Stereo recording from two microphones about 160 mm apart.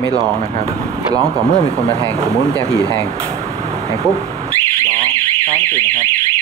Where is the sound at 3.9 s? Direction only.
20° right (ahead or behind).